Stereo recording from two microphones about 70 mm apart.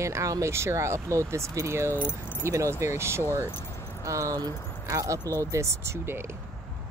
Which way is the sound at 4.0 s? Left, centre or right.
Right.